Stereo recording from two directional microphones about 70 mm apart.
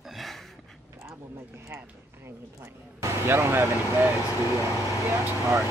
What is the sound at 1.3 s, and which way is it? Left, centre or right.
Speech, right.